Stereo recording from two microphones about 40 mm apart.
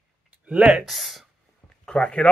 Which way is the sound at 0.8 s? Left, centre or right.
Centre.